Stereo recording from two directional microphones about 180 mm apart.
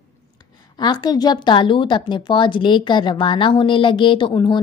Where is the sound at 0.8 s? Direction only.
25° left (ahead or behind).